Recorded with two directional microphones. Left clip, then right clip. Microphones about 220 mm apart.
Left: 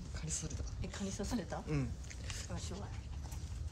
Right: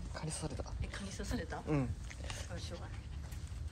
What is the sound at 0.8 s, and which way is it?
Speech, 20° left (ahead or behind).